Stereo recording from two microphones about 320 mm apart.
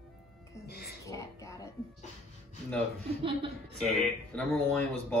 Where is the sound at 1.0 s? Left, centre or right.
Centre.